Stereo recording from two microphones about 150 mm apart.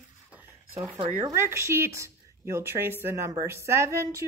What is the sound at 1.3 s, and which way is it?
Speech, 20° right (ahead or behind).